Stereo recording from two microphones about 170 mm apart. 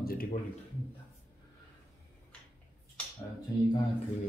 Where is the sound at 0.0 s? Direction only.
60° left (ahead or behind).